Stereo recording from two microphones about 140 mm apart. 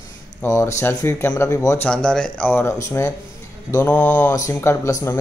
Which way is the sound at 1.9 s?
5° left (ahead or behind).